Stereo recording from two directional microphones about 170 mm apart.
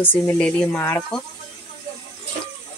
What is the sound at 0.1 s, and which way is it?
Speech, 10° left (ahead or behind).